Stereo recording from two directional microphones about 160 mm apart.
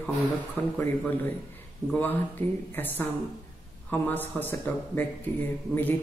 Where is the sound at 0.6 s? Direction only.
10° left (ahead or behind).